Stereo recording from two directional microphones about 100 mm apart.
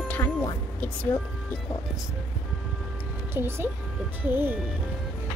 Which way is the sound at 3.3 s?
20° right (ahead or behind).